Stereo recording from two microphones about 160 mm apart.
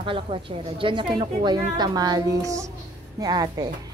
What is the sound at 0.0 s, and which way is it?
A woman's voice, 35° right (ahead or behind).